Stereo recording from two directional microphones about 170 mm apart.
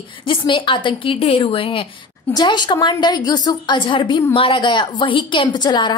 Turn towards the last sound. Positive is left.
turn(degrees=25)  # may be behind; listen again after turning